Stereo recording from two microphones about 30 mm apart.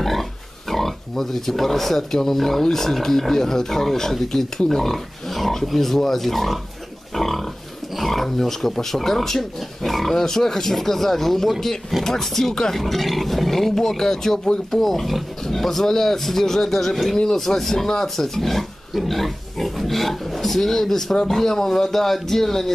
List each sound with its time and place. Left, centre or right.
0.0 s speech: centre
7.2 s pig: centre
8.0 s speech: centre
14.8 s speech: centre
17.2 s speech: left
17.6 s speech: centre